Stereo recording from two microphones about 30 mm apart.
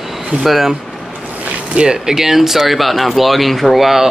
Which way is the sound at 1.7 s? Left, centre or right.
Right.